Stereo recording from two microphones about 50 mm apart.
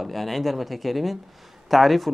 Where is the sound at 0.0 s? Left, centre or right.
Centre.